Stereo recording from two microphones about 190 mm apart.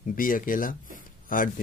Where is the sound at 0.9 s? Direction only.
45° left (ahead or behind).